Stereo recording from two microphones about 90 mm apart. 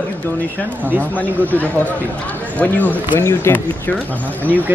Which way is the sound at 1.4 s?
20° left (ahead or behind).